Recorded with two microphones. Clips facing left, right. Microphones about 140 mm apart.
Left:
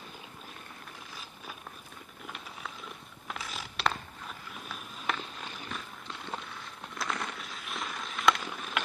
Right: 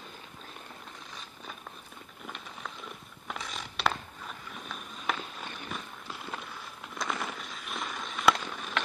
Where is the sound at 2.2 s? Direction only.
Centre (ahead or behind).